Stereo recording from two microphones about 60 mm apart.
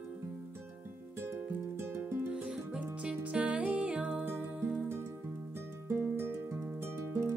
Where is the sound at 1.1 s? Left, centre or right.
Right.